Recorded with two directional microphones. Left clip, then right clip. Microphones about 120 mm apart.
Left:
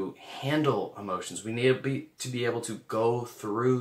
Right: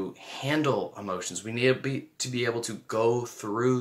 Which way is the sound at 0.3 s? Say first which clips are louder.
Right 1 dB; 25° right (ahead or behind).